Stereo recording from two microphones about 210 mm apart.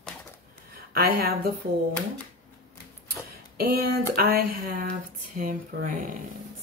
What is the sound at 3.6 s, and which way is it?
Speech, 45° right (ahead or behind).